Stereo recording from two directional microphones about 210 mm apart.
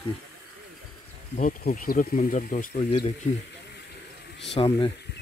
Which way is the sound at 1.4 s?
45° left (ahead or behind).